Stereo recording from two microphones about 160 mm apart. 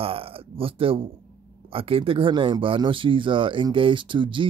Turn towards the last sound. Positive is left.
turn(degrees=-30)  # may be behind; listen again after turning